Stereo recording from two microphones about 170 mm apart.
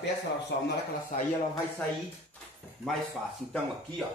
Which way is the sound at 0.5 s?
85° left.